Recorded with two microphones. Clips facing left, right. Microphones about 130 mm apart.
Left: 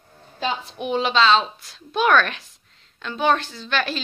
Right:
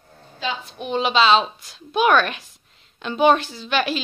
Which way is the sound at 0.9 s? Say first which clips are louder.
Right 1 dB; 10° right (ahead or behind).